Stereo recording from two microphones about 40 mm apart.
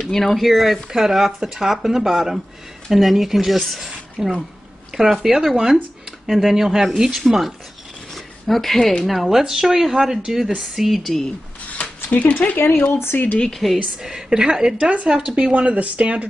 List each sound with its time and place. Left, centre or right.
0.0 s speech: centre
8.1 s a sound: centre
9.0 s speech: centre
11.8 s a sound: left
12.4 s speech: left
13.6 s speech: centre
14.0 s speech: centre
15.5 s speech: right